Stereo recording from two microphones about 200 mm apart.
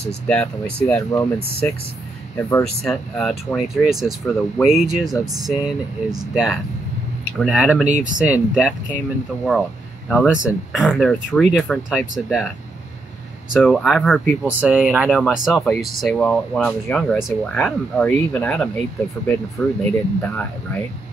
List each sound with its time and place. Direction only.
0.3 s speech: 5° left (ahead or behind)
5.2 s speech: 20° right (ahead or behind)
6.3 s speech: centre (ahead or behind)
7.9 s speech: 40° right (ahead or behind)
8.3 s speech: 5° right (ahead or behind)
13.5 s speech: centre (ahead or behind)